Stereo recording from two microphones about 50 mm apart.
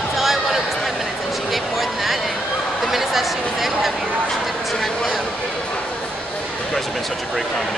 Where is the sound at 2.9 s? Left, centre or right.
Centre.